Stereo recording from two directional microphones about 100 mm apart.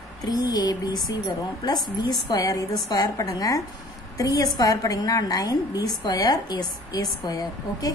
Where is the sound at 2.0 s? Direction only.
40° left (ahead or behind).